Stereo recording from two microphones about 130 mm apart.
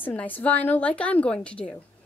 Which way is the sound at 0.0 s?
10° left (ahead or behind).